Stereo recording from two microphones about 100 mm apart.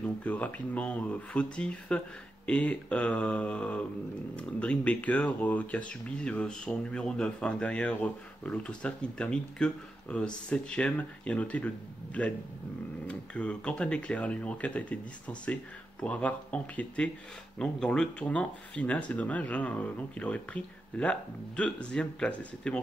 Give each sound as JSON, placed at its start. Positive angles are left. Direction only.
{"t": 0.0, "sound": "speech", "side_deg": 15}